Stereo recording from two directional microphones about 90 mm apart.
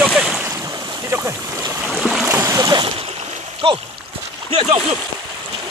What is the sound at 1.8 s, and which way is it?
Boat, 5° right (ahead or behind).